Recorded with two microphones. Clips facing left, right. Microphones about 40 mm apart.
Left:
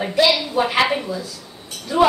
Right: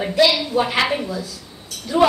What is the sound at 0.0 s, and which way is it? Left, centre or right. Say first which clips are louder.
A woman's voice: even; centre.